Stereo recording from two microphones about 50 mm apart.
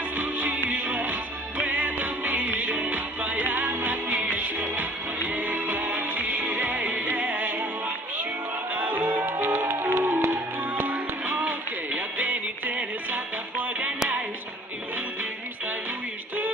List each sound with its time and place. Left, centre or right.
0.2 s music: right
8.7 s music: right
9.0 s music: right
10.8 s music: right